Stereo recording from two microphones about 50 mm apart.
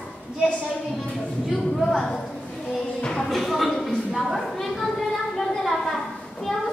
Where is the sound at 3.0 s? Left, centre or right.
Centre.